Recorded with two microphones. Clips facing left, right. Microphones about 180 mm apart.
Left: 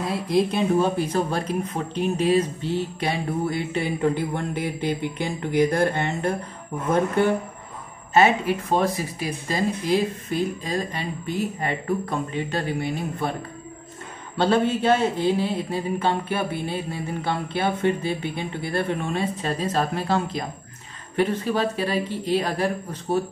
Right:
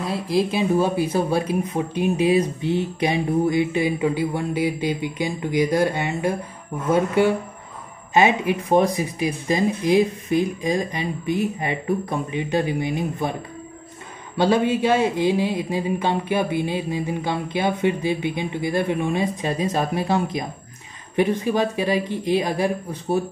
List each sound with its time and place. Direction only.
0.0 s speech: centre (ahead or behind)
8.1 s speech: 15° right (ahead or behind)
14.3 s speech: 10° right (ahead or behind)